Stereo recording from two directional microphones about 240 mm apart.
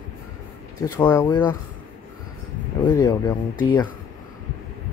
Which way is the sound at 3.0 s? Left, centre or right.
Centre.